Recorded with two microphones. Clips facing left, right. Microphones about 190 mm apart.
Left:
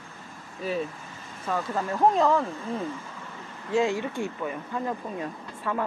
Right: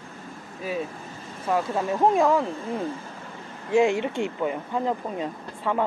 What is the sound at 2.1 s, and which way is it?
Speech, 10° right (ahead or behind).